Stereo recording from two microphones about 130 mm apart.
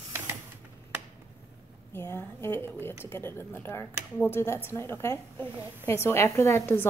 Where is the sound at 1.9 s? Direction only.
20° left (ahead or behind).